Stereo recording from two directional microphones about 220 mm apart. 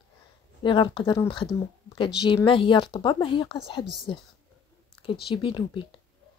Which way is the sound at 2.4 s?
25° left (ahead or behind).